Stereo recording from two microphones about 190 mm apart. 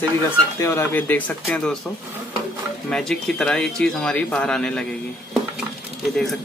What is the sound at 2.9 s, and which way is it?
Speech, 5° left (ahead or behind).